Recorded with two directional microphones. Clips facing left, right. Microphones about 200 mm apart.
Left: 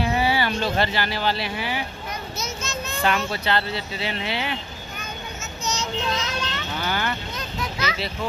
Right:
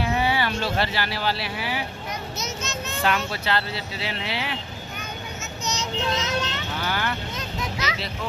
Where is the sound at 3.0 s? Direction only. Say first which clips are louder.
Left 2 dB; centre (ahead or behind).